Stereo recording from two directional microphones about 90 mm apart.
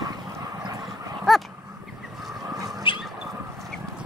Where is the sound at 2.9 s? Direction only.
70° left (ahead or behind).